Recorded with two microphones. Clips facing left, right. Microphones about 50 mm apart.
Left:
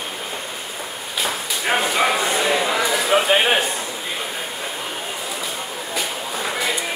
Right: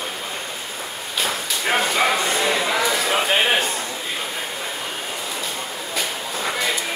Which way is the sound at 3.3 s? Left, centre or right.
Centre.